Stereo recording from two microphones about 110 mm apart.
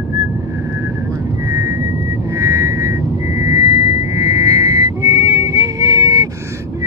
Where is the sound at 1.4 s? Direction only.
25° right (ahead or behind).